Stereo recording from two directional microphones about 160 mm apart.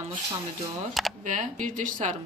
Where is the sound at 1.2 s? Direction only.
55° right (ahead or behind).